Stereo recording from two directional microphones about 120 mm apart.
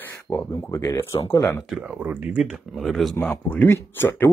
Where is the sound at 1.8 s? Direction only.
15° right (ahead or behind).